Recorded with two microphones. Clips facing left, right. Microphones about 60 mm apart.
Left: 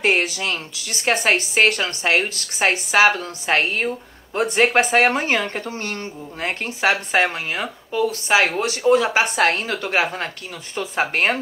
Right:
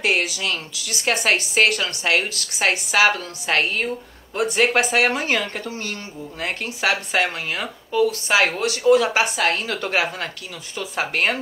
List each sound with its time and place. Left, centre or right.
0.0 s speech: left
6.4 s speech: left
9.4 s speech: left
9.7 s speech: centre
9.9 s speech: left